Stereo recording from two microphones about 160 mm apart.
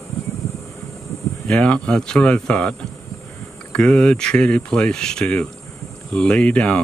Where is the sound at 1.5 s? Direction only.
5° left (ahead or behind).